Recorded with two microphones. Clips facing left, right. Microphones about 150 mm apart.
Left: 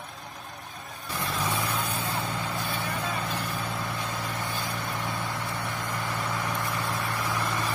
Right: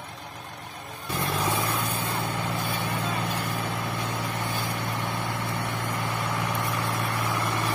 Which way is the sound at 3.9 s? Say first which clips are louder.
Right 2 dB; 65° right (ahead or behind).